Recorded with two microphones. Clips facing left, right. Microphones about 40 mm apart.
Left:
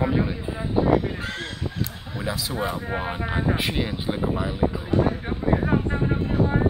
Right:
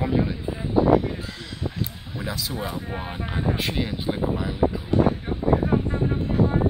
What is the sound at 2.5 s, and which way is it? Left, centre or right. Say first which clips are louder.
Speech: left 3 dB; left.